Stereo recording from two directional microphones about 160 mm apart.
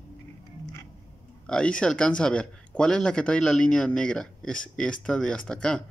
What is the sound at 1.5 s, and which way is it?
Speech, 5° left (ahead or behind).